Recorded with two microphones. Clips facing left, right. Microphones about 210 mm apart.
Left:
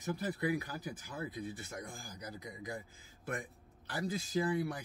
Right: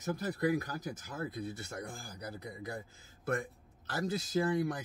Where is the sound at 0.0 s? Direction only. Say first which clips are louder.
Right 3 dB; 45° right (ahead or behind).